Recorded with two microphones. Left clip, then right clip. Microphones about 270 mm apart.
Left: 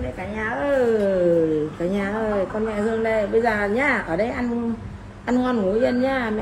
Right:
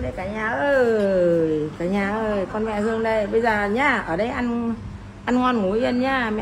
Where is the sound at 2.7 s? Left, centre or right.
Centre.